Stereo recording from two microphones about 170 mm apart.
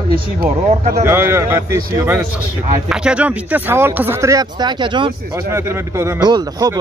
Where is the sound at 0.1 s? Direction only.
60° right (ahead or behind).